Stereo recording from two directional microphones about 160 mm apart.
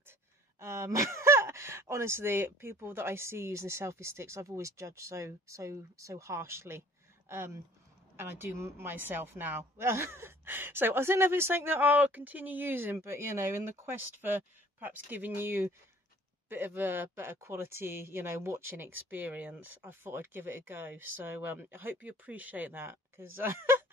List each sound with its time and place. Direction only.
0.6 s speech: 20° right (ahead or behind)